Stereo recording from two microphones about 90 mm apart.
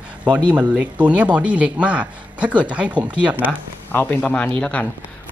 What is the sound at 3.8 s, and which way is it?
Speech, 20° left (ahead or behind).